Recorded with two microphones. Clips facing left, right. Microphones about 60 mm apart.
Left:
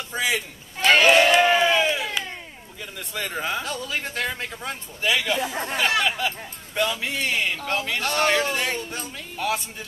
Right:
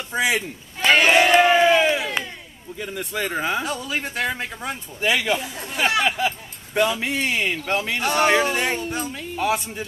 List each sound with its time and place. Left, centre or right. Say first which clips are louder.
0.1 s a sound: right 4 dB; centre
0.9 s crowd: right 1 dB; centre
2.8 s speech: right 5 dB; centre
5.4 s speech: left 5 dB; left
5.8 s speech: right 3 dB; centre